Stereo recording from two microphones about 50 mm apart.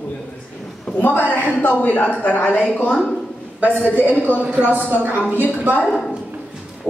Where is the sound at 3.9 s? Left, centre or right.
Left.